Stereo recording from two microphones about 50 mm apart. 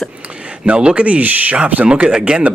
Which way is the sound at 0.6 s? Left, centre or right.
Right.